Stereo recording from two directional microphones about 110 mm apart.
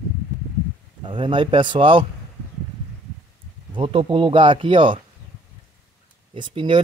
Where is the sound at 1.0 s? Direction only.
50° right (ahead or behind).